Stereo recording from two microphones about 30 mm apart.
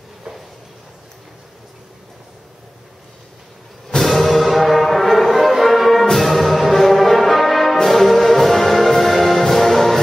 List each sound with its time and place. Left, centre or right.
4.0 s music: centre
6.1 s brass instrument: centre
7.7 s music: centre